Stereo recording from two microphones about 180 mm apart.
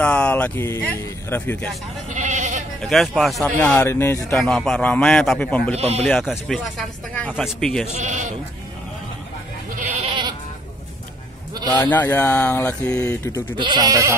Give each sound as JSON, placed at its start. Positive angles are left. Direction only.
{"t": 0.0, "sound": "speech", "side_deg": 5}
{"t": 2.0, "sound": "goat", "side_deg": -40}
{"t": 2.8, "sound": "speech", "side_deg": 0}
{"t": 4.4, "sound": "speech", "side_deg": 5}
{"t": 5.8, "sound": "speech", "side_deg": -35}
{"t": 6.0, "sound": "speech", "side_deg": 0}
{"t": 7.9, "sound": "speech", "side_deg": -40}
{"t": 10.0, "sound": "goat", "side_deg": -25}
{"t": 11.7, "sound": "speech", "side_deg": 10}
{"t": 13.6, "sound": "goat", "side_deg": -25}